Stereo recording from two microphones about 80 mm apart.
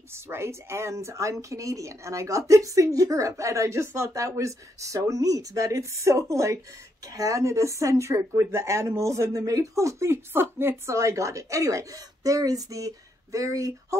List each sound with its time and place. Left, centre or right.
0.1 s speech: right